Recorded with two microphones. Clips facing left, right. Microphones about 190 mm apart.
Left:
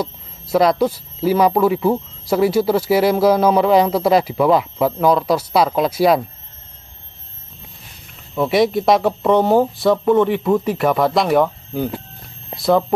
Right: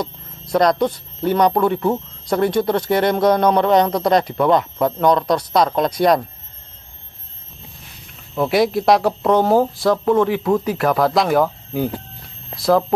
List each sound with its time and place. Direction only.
0.0 s speech: 5° left (ahead or behind)
8.4 s speech: centre (ahead or behind)